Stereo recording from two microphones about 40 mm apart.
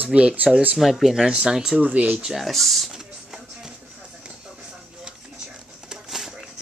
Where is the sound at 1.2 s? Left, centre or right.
Centre.